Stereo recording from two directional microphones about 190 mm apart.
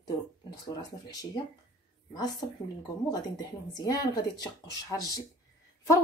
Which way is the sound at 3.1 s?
20° left (ahead or behind).